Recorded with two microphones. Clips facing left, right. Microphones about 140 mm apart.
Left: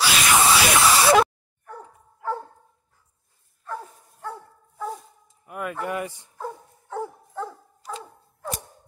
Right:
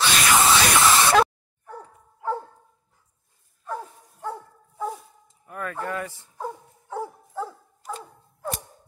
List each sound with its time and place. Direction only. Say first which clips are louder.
0.0 s a sound: even; 5° left (ahead or behind)
2.2 s dog: right 1 dB; 20° right (ahead or behind)
4.2 s dog: right 3 dB; 15° right (ahead or behind)
5.5 s speech: left 2 dB; 15° left (ahead or behind)
6.3 s dog: right 1 dB; 10° right (ahead or behind)